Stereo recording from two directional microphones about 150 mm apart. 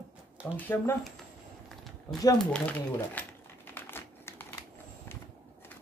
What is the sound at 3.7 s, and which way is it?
Crumpling, 15° left (ahead or behind).